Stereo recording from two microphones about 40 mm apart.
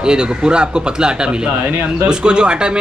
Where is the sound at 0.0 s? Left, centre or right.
Right.